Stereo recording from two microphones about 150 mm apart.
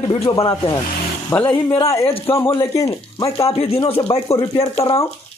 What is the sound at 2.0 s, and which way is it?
Speech, 40° left (ahead or behind).